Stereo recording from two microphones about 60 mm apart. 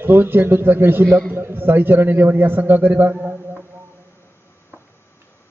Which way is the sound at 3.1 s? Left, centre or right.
Right.